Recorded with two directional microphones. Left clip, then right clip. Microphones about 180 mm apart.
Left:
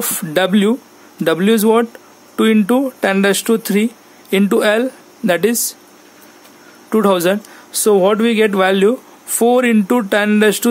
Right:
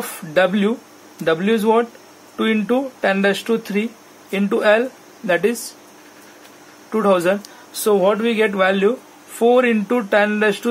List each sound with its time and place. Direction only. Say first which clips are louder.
0.3 s speech: left 2 dB; 70° left (ahead or behind)
6.9 s speech: left 2 dB; 65° left (ahead or behind)